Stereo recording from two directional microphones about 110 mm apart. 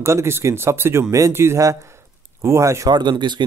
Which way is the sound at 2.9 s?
40° right (ahead or behind).